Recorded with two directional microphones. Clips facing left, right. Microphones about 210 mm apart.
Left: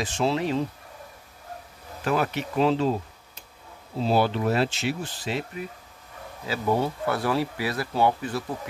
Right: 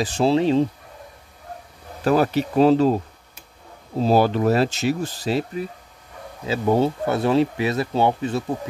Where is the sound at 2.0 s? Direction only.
35° right (ahead or behind).